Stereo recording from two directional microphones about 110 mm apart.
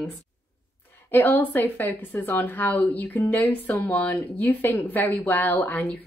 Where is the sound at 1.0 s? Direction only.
20° left (ahead or behind).